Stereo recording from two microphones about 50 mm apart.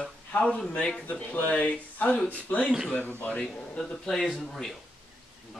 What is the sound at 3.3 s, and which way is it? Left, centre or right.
Speech, centre.